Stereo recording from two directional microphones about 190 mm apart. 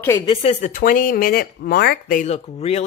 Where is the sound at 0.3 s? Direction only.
35° left (ahead or behind).